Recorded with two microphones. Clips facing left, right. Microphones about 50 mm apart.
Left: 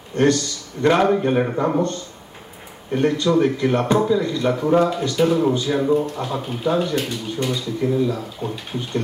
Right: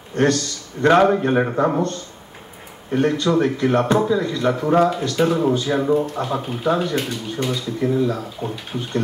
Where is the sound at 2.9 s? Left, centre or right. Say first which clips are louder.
Even; right.